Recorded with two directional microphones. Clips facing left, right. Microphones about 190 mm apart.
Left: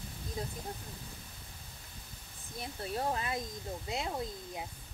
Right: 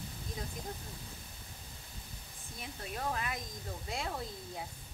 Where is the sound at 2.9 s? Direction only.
30° left (ahead or behind).